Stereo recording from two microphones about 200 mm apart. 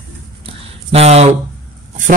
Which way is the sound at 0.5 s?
30° right (ahead or behind).